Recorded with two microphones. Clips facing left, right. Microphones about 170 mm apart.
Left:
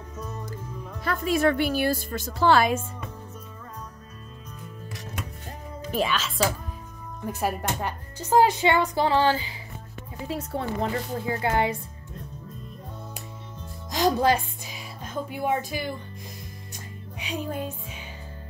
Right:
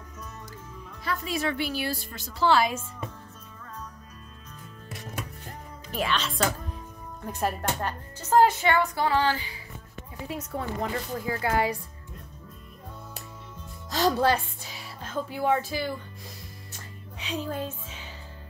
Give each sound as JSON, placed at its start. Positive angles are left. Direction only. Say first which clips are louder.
{"t": 0.2, "sound": "music", "louder": "left 8 dB", "side_deg": 35}
{"t": 1.0, "sound": "a woman's voice", "louder": "left 7 dB", "side_deg": 50}
{"t": 6.0, "sound": "speech", "louder": "right 3 dB", "side_deg": 0}
{"t": 13.8, "sound": "speech", "louder": "left 2 dB", "side_deg": 15}
{"t": 16.7, "sound": "music", "louder": "left 4 dB", "side_deg": 15}